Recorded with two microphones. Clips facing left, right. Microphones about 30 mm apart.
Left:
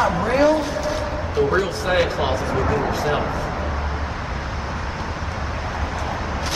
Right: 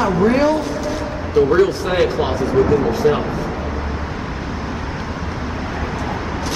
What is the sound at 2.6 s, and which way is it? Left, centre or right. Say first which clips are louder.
Speech: right 9 dB; centre.